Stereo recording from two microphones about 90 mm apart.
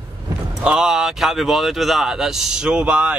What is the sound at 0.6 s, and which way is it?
Speech, 10° right (ahead or behind).